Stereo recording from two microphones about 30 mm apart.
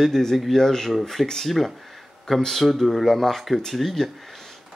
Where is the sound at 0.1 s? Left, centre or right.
Centre.